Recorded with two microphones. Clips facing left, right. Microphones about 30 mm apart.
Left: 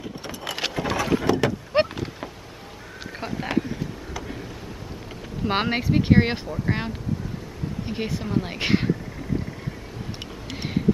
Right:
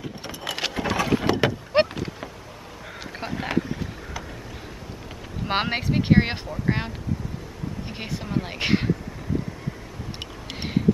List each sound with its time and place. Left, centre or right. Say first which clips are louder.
0.2 s vehicle: even; centre
1.2 s vehicle: even; right
3.1 s a sound: even; centre
5.4 s speech: left 1 dB; centre